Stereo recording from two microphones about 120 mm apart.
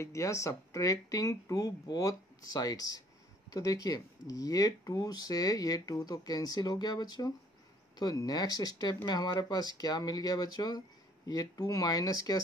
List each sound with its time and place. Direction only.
0.0 s speech: 25° left (ahead or behind)